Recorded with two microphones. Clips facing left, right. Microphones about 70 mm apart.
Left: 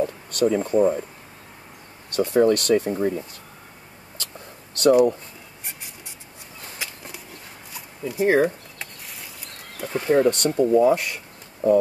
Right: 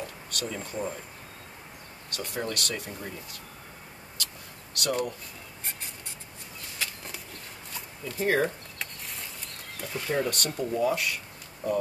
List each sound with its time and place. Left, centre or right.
0.0 s speech: left
2.0 s speech: left
4.8 s speech: left
6.8 s a sound: centre
9.8 s speech: left